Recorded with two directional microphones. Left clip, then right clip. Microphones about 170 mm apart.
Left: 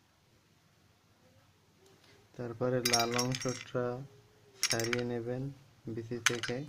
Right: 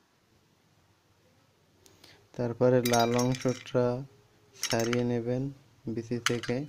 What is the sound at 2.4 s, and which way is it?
Speech, 40° right (ahead or behind).